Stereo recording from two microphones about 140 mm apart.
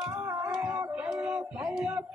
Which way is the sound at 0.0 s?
10° right (ahead or behind).